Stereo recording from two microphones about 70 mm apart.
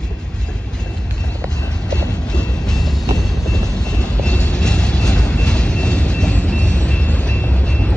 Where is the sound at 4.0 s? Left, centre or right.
Centre.